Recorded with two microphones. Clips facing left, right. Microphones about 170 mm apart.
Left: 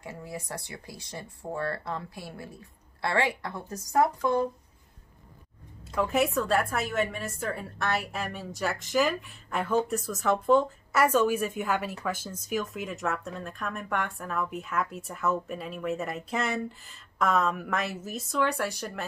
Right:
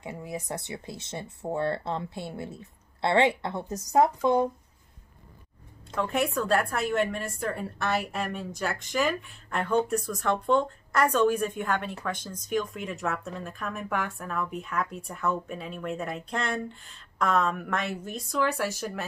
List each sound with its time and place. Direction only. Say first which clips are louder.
0.0 s speech: right 3 dB; 20° right (ahead or behind)
5.9 s speech: left 2 dB; centre (ahead or behind)